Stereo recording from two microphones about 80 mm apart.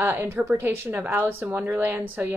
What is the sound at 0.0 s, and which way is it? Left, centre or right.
Speech, right.